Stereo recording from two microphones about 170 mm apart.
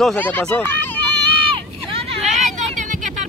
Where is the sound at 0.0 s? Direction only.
10° left (ahead or behind).